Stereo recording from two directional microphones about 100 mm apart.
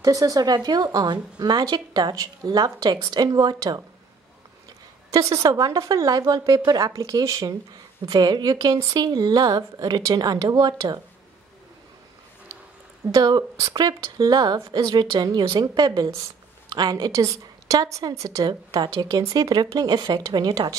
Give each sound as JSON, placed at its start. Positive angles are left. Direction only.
{"t": 0.0, "sound": "a woman's voice", "side_deg": -35}
{"t": 5.1, "sound": "a woman's voice", "side_deg": -35}
{"t": 13.0, "sound": "a woman's voice", "side_deg": -40}